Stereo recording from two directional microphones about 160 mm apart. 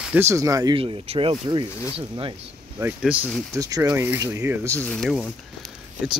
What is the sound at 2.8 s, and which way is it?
Speech, 10° right (ahead or behind).